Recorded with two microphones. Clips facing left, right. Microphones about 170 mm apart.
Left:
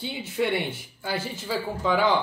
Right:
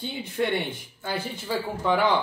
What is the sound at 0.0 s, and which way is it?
Speech, 10° left (ahead or behind).